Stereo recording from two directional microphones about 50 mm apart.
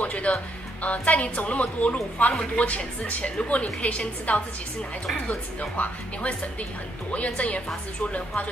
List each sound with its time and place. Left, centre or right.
0.0 s a woman's voice: left